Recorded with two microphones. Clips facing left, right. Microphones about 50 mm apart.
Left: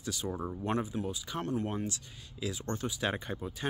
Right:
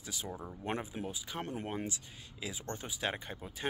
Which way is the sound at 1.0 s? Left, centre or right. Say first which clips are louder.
Left 4 dB; centre.